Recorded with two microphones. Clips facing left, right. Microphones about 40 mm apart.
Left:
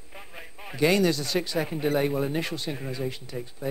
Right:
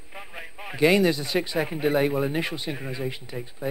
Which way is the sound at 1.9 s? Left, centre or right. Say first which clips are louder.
Right 2 dB; centre.